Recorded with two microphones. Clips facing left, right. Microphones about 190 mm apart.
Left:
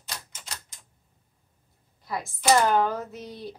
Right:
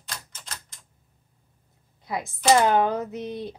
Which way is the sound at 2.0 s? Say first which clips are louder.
Right 2 dB; 20° right (ahead or behind).